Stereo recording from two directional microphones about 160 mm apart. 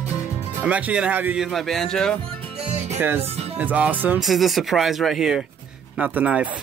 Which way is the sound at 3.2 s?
40° right (ahead or behind).